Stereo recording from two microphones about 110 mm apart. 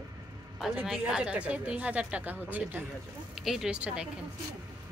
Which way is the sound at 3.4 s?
5° right (ahead or behind).